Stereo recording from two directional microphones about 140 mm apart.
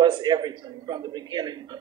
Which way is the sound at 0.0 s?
30° right (ahead or behind).